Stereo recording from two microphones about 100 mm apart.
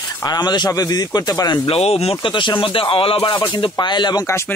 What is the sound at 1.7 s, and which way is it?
Speech, 90° left.